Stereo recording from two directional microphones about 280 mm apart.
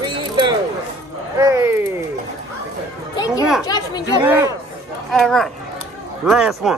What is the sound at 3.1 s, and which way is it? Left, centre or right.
Children playing, centre.